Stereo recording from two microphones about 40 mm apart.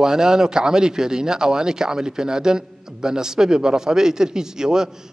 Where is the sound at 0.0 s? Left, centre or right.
Centre.